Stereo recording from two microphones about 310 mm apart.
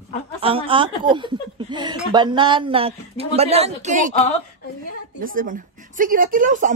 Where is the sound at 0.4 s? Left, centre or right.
Centre.